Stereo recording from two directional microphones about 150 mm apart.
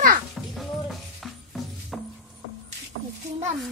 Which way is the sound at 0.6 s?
Centre (ahead or behind).